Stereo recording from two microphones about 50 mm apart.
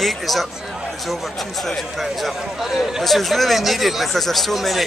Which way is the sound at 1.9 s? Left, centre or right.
Centre.